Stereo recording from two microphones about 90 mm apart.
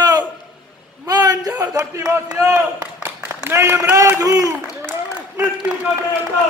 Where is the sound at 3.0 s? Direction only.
30° right (ahead or behind).